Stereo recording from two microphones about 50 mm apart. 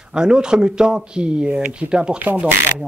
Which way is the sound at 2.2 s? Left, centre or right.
Right.